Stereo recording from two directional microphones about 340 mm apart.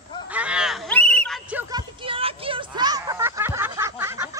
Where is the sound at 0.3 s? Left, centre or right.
Centre.